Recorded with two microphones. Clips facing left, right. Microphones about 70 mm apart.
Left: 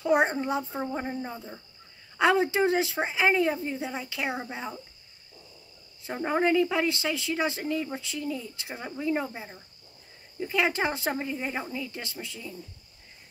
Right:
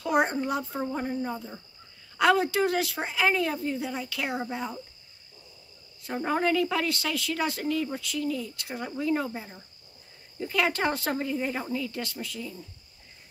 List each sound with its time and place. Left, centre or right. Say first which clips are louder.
0.0 s a child's voice: left 1 dB; left
6.1 s speech: left 1 dB; centre
10.5 s speech: even; centre